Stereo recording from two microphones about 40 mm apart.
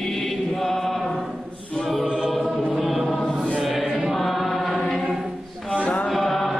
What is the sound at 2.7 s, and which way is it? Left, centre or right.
Chant, centre.